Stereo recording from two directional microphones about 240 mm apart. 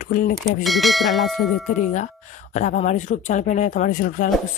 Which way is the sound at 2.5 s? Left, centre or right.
Left.